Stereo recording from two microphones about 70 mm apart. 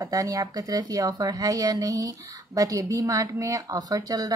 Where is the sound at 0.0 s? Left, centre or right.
Right.